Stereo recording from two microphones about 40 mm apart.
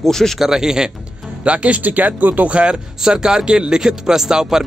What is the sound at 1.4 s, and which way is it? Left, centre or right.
Speech, right.